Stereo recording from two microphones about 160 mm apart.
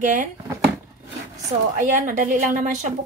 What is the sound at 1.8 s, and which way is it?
Speech, 50° right (ahead or behind).